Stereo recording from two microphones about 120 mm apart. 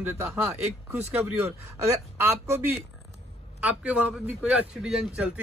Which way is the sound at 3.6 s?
10° right (ahead or behind).